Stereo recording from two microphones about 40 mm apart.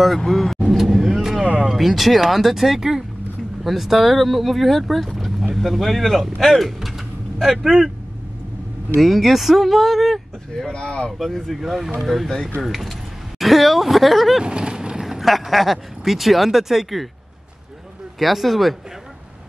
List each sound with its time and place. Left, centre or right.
0.2 s speech: centre
0.7 s vehicle: centre
1.7 s speech: centre
6.8 s a sound: centre
9.0 s speech: centre
10.7 s speech: left
11.1 s speech: centre
11.6 s speech: centre
14.4 s vehicle: right
15.0 s speech: centre
18.2 s speech: centre